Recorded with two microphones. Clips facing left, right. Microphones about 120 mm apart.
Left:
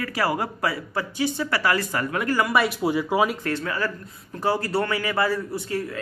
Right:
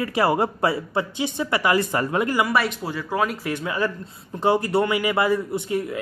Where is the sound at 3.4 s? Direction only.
15° right (ahead or behind).